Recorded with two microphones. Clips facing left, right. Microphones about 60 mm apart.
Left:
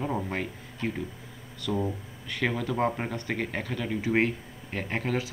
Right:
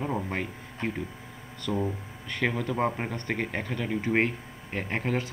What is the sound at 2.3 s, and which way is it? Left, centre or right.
Speech, centre.